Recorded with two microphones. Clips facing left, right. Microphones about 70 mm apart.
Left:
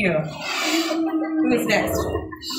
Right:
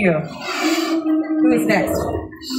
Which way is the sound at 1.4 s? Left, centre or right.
Right.